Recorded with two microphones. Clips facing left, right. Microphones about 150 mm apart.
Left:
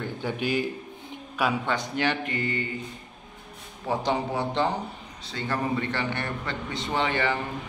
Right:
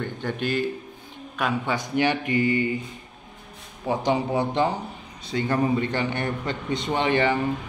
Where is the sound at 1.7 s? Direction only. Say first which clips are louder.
Right 3 dB; 10° right (ahead or behind).